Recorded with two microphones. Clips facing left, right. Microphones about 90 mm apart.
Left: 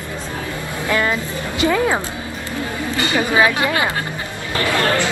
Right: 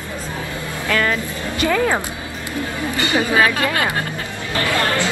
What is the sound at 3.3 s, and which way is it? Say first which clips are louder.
Speech: left 2 dB; 15° left (ahead or behind).